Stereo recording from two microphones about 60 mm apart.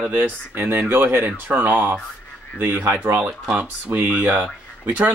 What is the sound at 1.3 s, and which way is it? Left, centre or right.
Speech, right.